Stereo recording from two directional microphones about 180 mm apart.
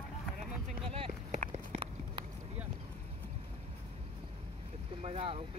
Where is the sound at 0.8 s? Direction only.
30° right (ahead or behind).